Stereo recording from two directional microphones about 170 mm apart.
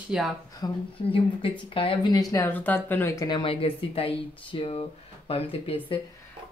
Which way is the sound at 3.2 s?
30° left (ahead or behind).